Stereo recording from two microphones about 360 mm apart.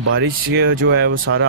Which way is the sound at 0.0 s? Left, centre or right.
Right.